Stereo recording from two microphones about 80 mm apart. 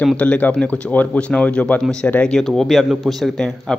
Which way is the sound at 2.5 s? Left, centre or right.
Centre.